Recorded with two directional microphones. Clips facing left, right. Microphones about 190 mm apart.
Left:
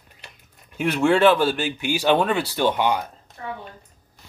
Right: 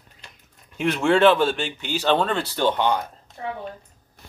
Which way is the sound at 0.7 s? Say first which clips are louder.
Left 1 dB; centre (ahead or behind).